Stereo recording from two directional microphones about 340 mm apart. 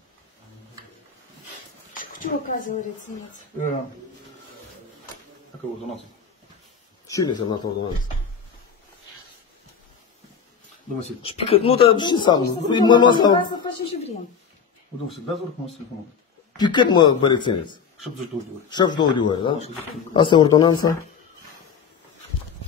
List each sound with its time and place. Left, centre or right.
2.0 s a woman's voice: left
7.1 s a man's voice: centre
11.2 s a man's voice: centre
16.5 s a man's voice: centre